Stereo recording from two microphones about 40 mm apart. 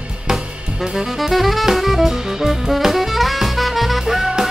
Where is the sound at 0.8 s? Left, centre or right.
Centre.